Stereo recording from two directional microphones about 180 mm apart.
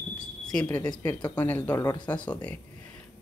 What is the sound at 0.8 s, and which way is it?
A woman's voice, 15° left (ahead or behind).